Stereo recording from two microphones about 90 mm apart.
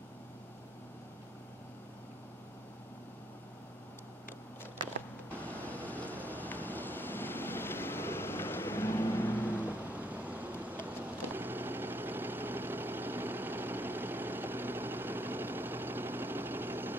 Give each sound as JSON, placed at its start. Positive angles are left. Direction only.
{"t": 5.3, "sound": "vehicle", "side_deg": 15}
{"t": 9.6, "sound": "music", "side_deg": -15}
{"t": 11.0, "sound": "vehicle", "side_deg": -20}